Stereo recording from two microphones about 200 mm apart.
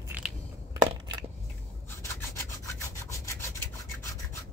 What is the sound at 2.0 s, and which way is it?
Rub, 15° left (ahead or behind).